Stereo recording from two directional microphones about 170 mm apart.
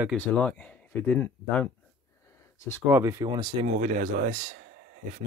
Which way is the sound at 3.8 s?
50° right (ahead or behind).